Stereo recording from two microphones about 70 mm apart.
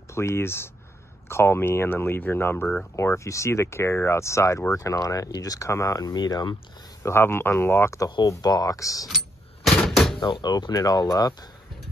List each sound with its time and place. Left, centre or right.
0.1 s speech: left
3.0 s speech: left
4.7 s speech: left
7.0 s speech: left
8.0 s speech: left
9.7 s door: centre
10.2 s speech: left